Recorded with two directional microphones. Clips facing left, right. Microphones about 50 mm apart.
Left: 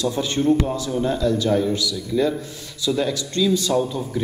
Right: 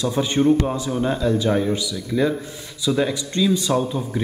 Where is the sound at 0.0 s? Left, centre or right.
Right.